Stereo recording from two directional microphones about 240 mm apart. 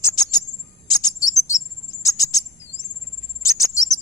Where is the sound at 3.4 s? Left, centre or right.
Centre.